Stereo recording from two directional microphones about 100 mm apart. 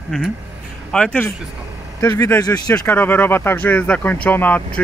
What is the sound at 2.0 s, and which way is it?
Speech, 30° left (ahead or behind).